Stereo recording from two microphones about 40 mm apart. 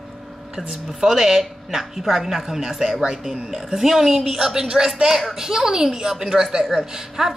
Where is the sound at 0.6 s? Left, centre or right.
Centre.